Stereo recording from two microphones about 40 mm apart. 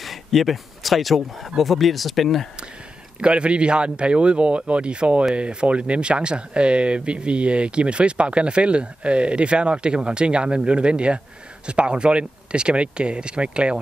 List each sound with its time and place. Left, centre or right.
0.0 s speech: centre
3.2 s speech: right